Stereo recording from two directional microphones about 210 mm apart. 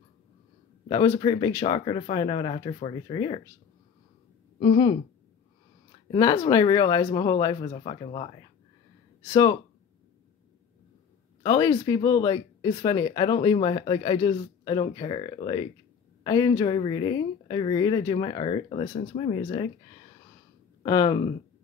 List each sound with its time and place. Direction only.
0.8 s speech: 15° left (ahead or behind)
4.6 s a woman's voice: 20° left (ahead or behind)
11.4 s speech: 20° left (ahead or behind)